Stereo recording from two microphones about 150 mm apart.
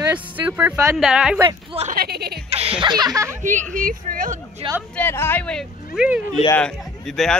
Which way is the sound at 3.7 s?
65° right (ahead or behind).